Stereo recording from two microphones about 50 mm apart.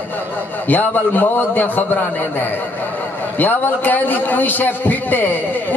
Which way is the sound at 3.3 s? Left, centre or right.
Left.